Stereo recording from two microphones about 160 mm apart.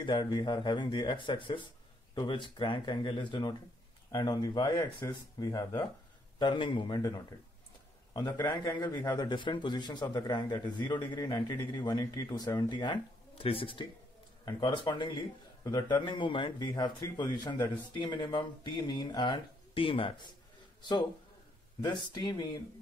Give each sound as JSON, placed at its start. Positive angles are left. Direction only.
{"t": 0.0, "sound": "a man's voice", "side_deg": 30}
{"t": 21.8, "sound": "speech", "side_deg": 25}